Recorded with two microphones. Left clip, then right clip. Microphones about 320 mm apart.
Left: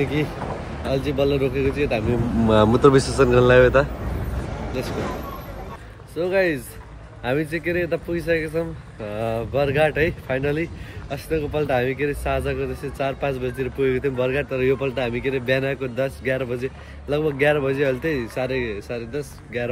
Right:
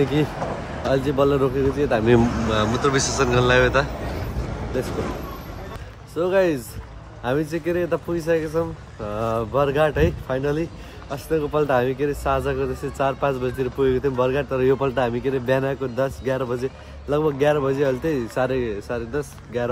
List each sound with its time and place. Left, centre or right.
0.8 s a man's voice: centre
2.4 s speech: centre
4.8 s speech: left
6.1 s a man's voice: centre